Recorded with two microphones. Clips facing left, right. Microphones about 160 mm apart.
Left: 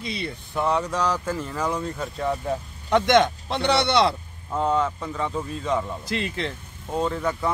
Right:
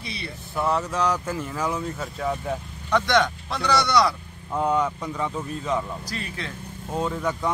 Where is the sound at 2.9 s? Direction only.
20° left (ahead or behind).